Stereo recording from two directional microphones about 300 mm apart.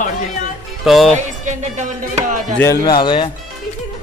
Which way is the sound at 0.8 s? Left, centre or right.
Centre.